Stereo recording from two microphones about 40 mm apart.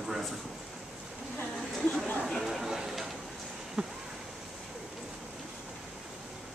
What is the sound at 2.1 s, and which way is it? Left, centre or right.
Speech, centre.